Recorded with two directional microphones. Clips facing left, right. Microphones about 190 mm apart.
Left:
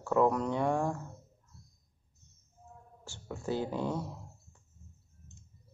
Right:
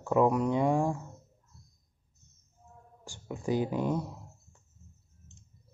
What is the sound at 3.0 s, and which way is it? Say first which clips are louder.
Speech: right 3 dB; 15° right (ahead or behind).